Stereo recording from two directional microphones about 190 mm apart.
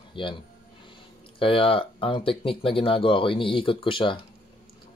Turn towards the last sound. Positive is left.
turn(degrees=25)  # may be behind; listen again after turning